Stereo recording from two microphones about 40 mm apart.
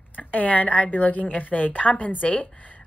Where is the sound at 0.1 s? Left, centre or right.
Left.